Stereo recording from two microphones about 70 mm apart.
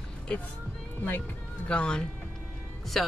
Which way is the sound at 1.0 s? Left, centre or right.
Left.